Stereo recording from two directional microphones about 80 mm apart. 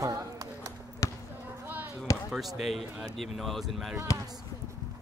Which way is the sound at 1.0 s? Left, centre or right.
Left.